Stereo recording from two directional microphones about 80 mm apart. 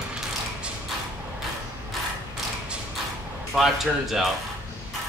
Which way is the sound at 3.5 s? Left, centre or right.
Centre.